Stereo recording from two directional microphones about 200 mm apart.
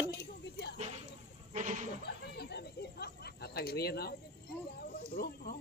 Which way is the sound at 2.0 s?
55° left (ahead or behind).